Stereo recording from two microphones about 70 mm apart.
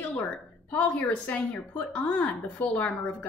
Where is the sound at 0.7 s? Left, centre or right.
Left.